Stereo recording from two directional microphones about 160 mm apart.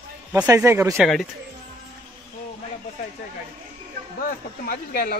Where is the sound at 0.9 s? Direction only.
5° left (ahead or behind).